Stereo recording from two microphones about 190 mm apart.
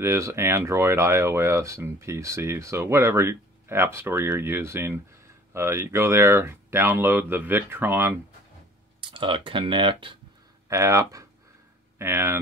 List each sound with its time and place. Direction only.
0.0 s speech: 15° right (ahead or behind)
9.0 s speech: 25° right (ahead or behind)
10.7 s speech: 15° right (ahead or behind)